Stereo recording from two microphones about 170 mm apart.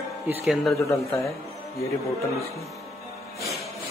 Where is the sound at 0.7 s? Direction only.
15° left (ahead or behind).